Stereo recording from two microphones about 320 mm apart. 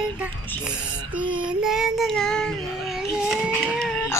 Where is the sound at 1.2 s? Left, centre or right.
Centre.